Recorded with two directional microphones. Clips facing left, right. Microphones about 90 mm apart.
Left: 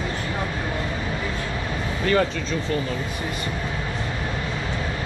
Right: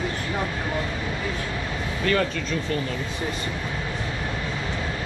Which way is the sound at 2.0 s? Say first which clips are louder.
Left 2 dB; 15° left (ahead or behind).